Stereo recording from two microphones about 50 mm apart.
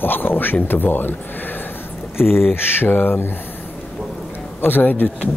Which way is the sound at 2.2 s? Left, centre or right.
Centre.